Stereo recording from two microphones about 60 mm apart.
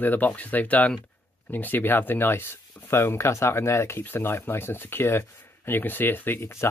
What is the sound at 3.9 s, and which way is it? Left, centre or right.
Speech, left.